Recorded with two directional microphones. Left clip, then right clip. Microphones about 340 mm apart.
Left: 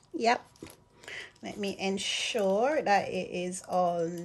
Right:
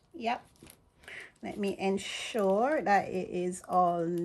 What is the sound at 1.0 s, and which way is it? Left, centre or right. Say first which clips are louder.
Speech: left 2 dB; centre.